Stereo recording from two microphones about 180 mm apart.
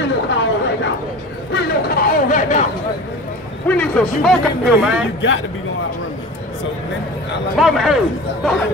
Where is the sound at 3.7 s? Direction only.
5° left (ahead or behind).